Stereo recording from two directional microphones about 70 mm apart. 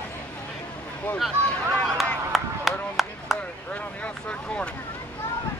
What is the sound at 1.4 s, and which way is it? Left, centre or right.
Speech, centre.